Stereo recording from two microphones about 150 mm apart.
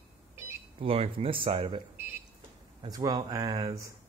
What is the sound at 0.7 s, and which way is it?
Speech, 40° right (ahead or behind).